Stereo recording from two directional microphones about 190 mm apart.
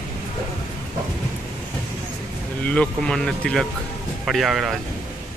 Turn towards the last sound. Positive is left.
turn(degrees=0)  # may be behind; listen again after turning